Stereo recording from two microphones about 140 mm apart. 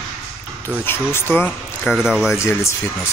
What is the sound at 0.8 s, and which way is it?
Speech, 15° left (ahead or behind).